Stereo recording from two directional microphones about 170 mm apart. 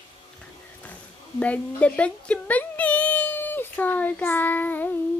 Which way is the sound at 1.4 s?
10° left (ahead or behind).